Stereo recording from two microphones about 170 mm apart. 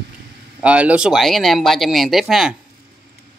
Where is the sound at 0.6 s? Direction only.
10° right (ahead or behind).